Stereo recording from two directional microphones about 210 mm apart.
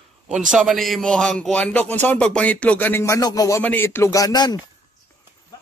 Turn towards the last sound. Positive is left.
turn(degrees=20)  # may be behind; listen again after turning